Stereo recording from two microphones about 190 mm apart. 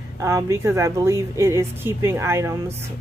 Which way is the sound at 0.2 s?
15° right (ahead or behind).